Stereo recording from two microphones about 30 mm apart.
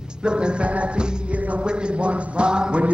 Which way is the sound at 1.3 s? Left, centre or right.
Right.